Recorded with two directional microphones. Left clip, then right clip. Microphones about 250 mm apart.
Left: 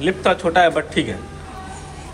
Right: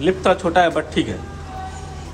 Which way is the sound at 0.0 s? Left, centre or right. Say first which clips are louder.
Right 1 dB; centre.